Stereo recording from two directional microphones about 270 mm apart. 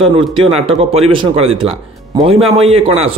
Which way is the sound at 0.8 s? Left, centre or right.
Right.